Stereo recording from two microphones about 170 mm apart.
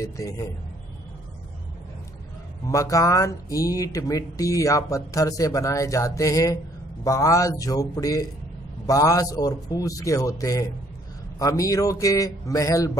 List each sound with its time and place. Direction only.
0.0 s speech: 20° left (ahead or behind)
2.6 s speech: 20° left (ahead or behind)